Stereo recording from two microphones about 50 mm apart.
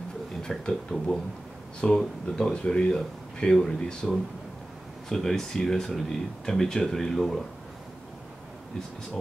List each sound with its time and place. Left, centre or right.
0.4 s speech: centre
3.5 s speech: centre